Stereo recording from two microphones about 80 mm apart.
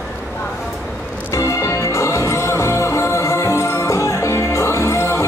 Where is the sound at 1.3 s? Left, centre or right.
Left.